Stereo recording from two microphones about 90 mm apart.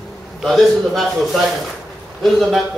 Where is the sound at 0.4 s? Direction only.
Centre (ahead or behind).